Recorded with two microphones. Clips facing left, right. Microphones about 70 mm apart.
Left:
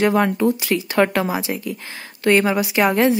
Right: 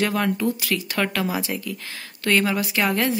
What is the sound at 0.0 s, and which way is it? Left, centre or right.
A woman's voice, left.